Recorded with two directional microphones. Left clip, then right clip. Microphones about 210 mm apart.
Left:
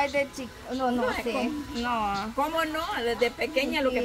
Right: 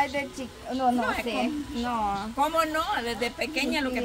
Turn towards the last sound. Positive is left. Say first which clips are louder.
# left 2 dB
turn(degrees=-20)  # may be behind; listen again after turning